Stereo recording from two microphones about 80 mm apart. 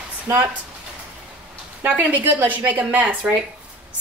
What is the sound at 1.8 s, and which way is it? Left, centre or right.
A woman's voice, right.